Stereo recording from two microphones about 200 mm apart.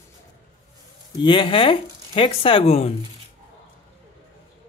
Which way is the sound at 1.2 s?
25° left (ahead or behind).